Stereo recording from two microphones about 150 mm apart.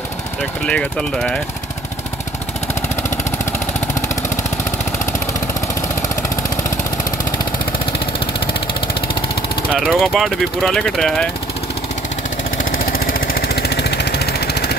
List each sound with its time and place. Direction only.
0.7 s speech: 5° left (ahead or behind)
9.8 s speech: centre (ahead or behind)
12.7 s vehicle: 80° left